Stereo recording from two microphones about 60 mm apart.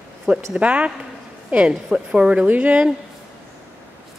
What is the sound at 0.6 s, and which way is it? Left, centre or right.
A woman's voice, right.